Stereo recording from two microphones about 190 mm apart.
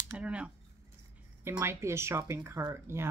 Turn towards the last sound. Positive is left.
turn(degrees=-15)  # may be behind; listen again after turning